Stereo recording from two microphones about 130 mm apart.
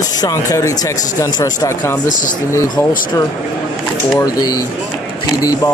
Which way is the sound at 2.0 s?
85° left.